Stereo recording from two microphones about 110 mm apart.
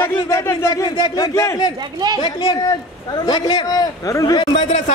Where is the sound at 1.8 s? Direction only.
40° right (ahead or behind).